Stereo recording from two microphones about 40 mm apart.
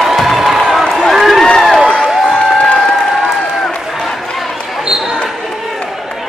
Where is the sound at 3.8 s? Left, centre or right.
Centre.